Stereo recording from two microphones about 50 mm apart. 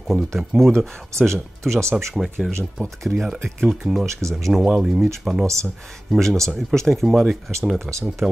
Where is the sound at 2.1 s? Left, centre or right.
Centre.